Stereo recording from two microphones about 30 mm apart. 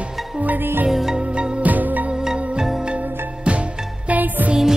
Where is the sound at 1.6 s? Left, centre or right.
Right.